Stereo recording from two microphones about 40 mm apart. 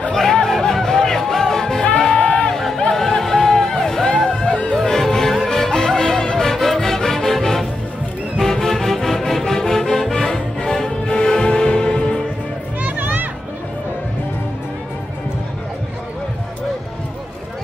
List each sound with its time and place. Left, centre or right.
0.1 s music: centre
2.1 s a sound: left
2.5 s a sound: centre
2.9 s music: centre
4.5 s music: left
4.8 s music: centre
12.8 s children playing: right